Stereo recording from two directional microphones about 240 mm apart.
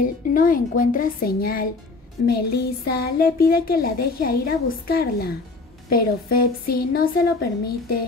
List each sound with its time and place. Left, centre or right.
0.0 s speech: left